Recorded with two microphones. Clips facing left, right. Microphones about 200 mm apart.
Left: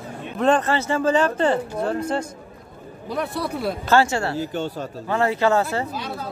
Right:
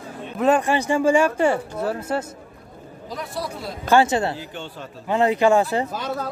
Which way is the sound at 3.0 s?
60° left (ahead or behind).